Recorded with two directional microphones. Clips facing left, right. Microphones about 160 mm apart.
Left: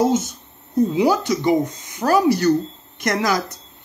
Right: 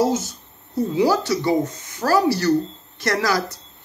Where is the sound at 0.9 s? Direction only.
20° left (ahead or behind).